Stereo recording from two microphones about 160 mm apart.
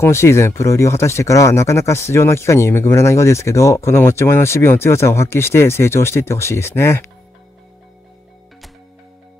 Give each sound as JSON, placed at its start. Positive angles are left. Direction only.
{"t": 0.0, "sound": "speech", "side_deg": 15}